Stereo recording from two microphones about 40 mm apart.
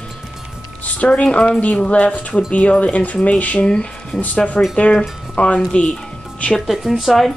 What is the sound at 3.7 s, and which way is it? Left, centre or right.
Speech, left.